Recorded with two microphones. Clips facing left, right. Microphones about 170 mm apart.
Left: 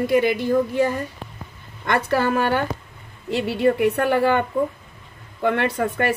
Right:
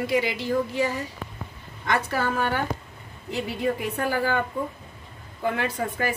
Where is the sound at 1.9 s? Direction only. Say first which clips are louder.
Left 5 dB; 65° left (ahead or behind).